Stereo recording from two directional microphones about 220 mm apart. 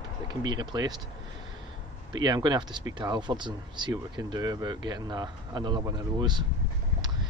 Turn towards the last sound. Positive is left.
turn(degrees=-20)  # may be behind; listen again after turning